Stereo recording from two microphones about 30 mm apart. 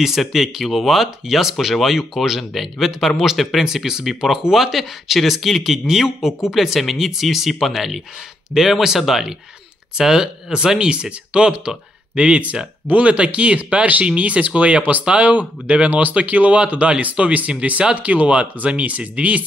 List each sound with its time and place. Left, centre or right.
0.3 s speech: centre
3.5 s speech: centre
9.9 s speech: right
10.8 s speech: right